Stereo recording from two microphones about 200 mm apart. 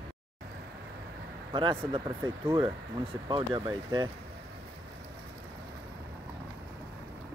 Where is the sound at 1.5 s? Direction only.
25° right (ahead or behind).